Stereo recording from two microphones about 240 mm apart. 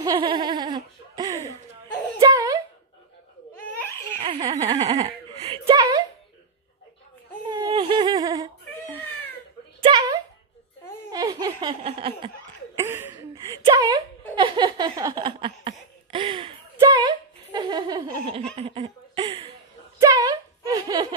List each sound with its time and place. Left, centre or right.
0.0 s giggle: centre
2.1 s wail: centre
3.5 s laughter: centre
4.2 s whimper: right
7.5 s a sound: centre
11.1 s laughter: centre
12.7 s a sound: centre
18.1 s laughter: right
20.0 s a sound: centre